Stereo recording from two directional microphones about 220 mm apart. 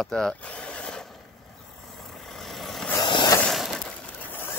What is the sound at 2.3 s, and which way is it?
Vehicle, centre (ahead or behind).